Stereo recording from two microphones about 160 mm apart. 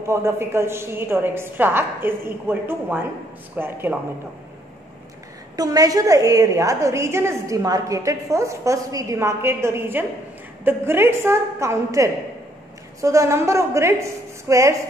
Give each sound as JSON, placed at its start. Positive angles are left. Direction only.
{"t": 0.0, "sound": "a woman's voice", "side_deg": -15}
{"t": 5.6, "sound": "a woman's voice", "side_deg": -20}